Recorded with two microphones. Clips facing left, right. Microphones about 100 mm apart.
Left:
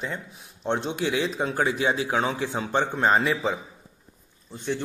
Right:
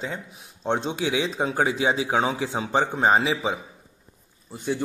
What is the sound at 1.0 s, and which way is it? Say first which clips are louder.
Speech: even; 90° right.